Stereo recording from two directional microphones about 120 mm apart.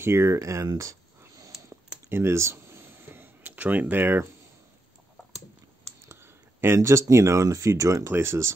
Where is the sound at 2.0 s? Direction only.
20° right (ahead or behind).